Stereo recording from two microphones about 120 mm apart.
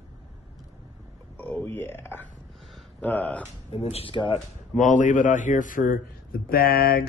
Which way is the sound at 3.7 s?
50° left (ahead or behind).